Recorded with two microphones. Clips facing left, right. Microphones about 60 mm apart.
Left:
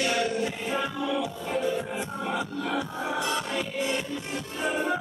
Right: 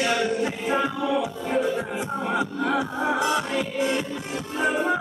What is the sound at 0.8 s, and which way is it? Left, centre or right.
Music, centre.